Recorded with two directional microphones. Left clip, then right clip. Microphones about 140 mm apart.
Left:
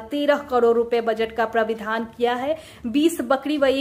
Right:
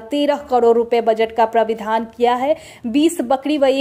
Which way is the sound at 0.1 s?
35° right (ahead or behind).